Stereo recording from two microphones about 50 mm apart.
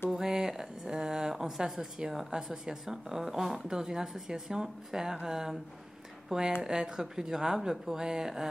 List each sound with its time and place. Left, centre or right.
0.1 s speech: centre